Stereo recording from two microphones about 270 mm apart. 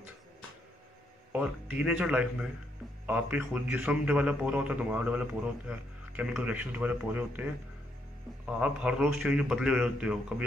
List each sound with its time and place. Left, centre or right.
1.3 s a man's voice: centre
8.5 s a man's voice: centre